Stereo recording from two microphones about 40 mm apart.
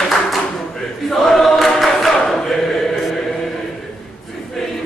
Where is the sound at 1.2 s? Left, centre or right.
Centre.